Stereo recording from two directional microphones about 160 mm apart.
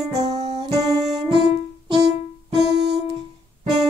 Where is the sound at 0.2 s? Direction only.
45° right (ahead or behind).